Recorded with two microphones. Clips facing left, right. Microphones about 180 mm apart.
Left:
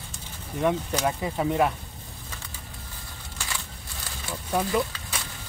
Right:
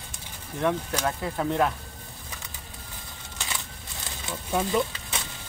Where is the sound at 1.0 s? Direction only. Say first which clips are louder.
Left 2 dB; 10° left (ahead or behind).